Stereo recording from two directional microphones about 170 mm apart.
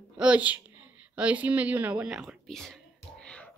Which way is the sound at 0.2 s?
5° right (ahead or behind).